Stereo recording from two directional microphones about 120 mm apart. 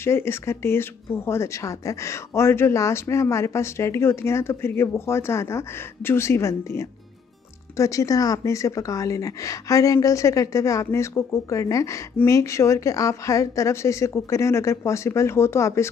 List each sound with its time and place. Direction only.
0.0 s speech: 20° left (ahead or behind)